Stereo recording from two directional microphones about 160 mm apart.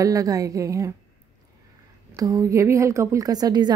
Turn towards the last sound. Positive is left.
turn(degrees=-25)  # may be behind; listen again after turning